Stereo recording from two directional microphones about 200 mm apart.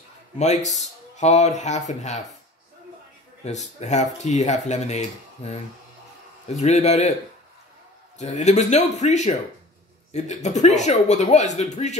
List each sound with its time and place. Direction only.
0.4 s speech: 35° left (ahead or behind)
3.4 s speech: 35° left (ahead or behind)
8.2 s speech: 35° left (ahead or behind)